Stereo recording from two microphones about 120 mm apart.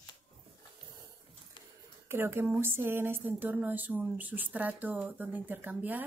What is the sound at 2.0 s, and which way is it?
Speech, 20° right (ahead or behind).